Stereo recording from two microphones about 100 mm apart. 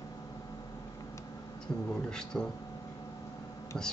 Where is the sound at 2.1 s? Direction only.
5° left (ahead or behind).